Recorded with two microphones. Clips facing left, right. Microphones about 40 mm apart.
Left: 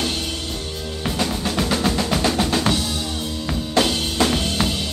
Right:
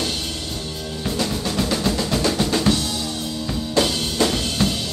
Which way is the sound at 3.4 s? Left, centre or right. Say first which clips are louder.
Left 1 dB; left.